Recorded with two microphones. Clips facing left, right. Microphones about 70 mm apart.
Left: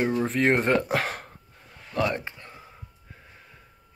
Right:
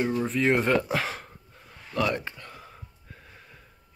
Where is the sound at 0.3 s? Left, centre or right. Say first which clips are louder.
Even; left.